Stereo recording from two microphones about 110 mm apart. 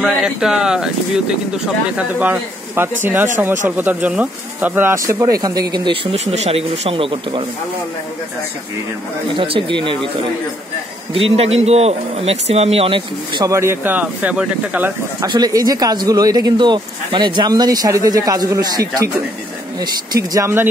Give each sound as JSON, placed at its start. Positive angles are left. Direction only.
{"t": 0.0, "sound": "speech", "side_deg": -5}
{"t": 6.1, "sound": "speech", "side_deg": -80}
{"t": 9.3, "sound": "speech", "side_deg": -50}
{"t": 11.1, "sound": "speech", "side_deg": -60}
{"t": 13.5, "sound": "speech", "side_deg": -25}
{"t": 15.2, "sound": "speech", "side_deg": -40}